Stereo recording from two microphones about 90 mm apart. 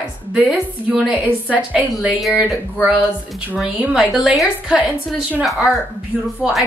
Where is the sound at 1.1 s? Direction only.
15° right (ahead or behind).